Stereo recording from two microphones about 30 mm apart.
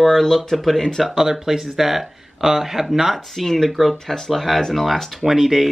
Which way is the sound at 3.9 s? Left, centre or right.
Centre.